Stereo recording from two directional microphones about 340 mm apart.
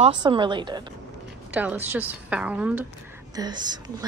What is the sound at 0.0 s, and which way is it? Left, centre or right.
A woman's voice, centre.